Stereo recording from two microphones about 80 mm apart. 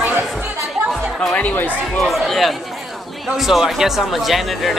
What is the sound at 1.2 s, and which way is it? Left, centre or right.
Speech, centre.